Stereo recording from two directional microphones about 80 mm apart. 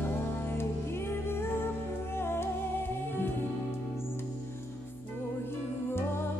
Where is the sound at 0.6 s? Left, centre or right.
Left.